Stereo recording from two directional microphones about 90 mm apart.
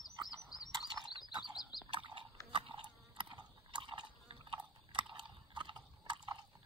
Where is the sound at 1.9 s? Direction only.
70° right (ahead or behind).